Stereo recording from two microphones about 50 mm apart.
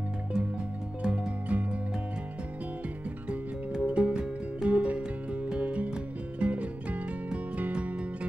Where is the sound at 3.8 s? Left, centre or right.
Right.